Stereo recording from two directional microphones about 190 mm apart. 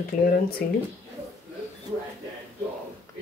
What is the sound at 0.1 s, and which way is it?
Speech, 45° left (ahead or behind).